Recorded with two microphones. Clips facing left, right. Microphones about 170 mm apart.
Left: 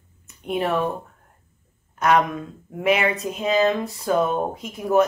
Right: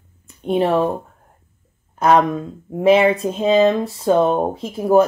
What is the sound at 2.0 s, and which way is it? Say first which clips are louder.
Speech: right 4 dB; 30° right (ahead or behind).